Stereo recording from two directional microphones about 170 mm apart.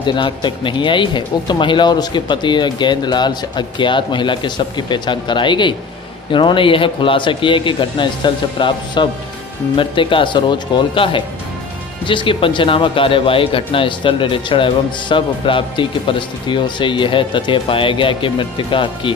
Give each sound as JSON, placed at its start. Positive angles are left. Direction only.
{"t": 0.0, "sound": "speech", "side_deg": 30}